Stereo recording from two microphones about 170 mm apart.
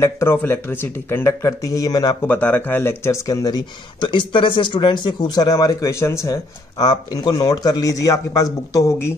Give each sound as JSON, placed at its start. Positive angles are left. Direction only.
{"t": 0.0, "sound": "speech", "side_deg": 15}
{"t": 2.2, "sound": "speech", "side_deg": 10}